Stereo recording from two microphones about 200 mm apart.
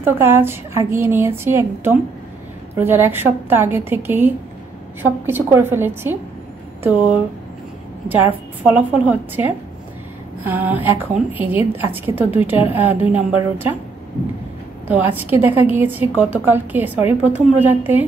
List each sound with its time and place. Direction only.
0.0 s a woman's voice: 10° right (ahead or behind)
14.9 s a woman's voice: 10° right (ahead or behind)